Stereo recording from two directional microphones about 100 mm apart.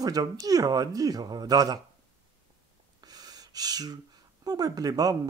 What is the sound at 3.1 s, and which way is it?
Gasp, 40° right (ahead or behind).